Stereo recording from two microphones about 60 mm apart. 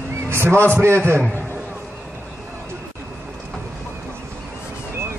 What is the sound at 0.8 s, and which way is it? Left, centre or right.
Speech, right.